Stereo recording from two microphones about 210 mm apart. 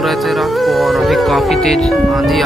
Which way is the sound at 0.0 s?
Centre (ahead or behind).